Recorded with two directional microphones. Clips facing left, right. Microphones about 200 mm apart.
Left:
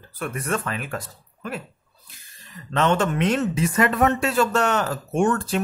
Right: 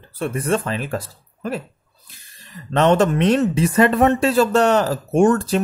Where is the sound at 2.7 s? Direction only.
35° right (ahead or behind).